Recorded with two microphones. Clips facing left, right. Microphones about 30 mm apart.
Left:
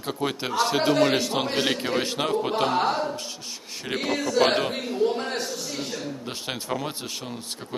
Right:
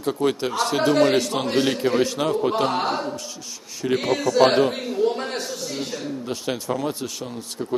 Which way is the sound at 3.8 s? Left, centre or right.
Centre.